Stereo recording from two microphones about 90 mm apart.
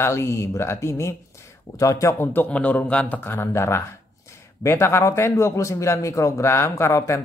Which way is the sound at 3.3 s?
30° left (ahead or behind).